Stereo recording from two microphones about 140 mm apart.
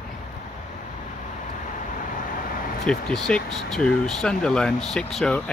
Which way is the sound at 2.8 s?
5° left (ahead or behind).